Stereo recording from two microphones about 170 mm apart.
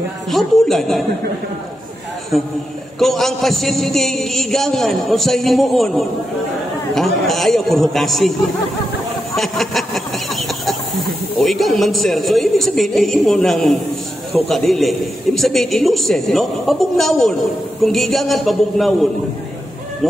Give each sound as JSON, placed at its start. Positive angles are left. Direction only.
{"t": 0.3, "sound": "a man's voice", "side_deg": 0}
{"t": 3.0, "sound": "a man's voice", "side_deg": 0}
{"t": 9.3, "sound": "a sound", "side_deg": 0}
{"t": 11.3, "sound": "a man's voice", "side_deg": 0}